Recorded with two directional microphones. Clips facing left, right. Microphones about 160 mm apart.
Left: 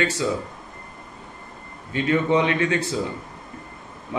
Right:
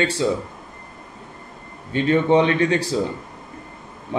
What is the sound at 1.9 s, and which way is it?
Speech, 30° right (ahead or behind).